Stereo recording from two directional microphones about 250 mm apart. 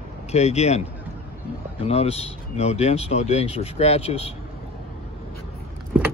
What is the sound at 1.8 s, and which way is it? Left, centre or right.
Speech, left.